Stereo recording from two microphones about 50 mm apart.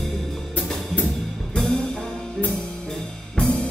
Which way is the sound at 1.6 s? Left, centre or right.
Centre.